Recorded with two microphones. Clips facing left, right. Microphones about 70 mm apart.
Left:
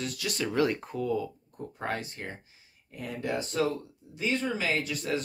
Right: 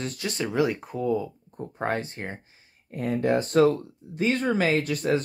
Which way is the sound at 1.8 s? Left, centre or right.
Right.